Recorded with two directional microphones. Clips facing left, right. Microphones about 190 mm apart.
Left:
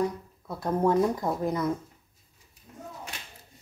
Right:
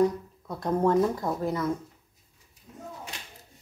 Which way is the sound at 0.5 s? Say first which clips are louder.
Right 1 dB; 5° left (ahead or behind).